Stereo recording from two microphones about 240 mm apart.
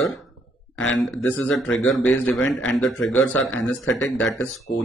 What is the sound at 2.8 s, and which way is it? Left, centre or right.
Speech, left.